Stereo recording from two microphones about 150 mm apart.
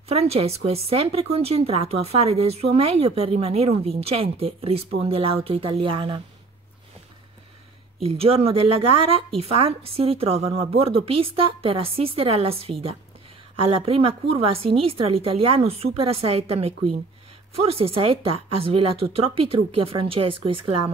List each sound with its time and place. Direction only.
0.1 s speech: 40° right (ahead or behind)
8.0 s speech: 40° right (ahead or behind)